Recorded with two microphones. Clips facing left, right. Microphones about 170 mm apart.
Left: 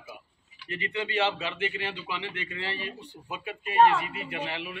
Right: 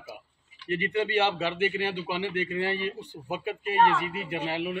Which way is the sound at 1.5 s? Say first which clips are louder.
Right 5 dB; 50° right (ahead or behind).